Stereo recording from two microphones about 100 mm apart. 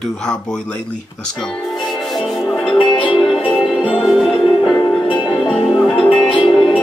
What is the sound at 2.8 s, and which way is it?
Music, 55° left (ahead or behind).